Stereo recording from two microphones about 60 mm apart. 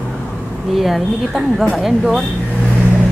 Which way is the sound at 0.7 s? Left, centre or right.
Centre.